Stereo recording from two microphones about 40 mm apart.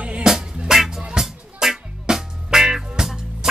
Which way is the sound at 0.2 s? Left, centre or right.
Centre.